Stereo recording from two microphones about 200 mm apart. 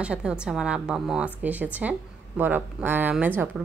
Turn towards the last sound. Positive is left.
turn(degrees=-10)  # may be behind; listen again after turning